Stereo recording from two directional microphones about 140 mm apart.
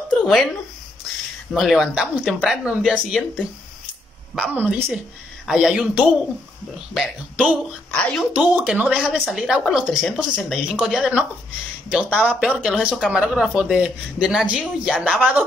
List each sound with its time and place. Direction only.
0.1 s speech: 5° left (ahead or behind)
4.6 s speech: 15° right (ahead or behind); by 8.3 s 5° left (ahead or behind)
8.4 s speech: 10° right (ahead or behind)
9.0 s speech: 5° left (ahead or behind)
15.0 s speech: 5° left (ahead or behind)